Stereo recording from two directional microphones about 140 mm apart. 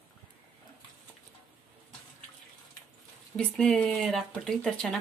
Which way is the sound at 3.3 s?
5° left (ahead or behind).